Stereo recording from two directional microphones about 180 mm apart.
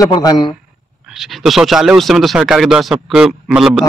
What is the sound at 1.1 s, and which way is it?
Speech, centre (ahead or behind).